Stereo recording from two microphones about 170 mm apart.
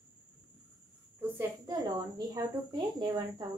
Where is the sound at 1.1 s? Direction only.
15° right (ahead or behind).